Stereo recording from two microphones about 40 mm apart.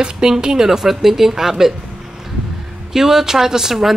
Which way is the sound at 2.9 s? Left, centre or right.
Centre.